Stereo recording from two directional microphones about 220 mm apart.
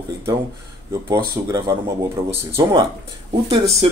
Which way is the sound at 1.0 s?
15° right (ahead or behind).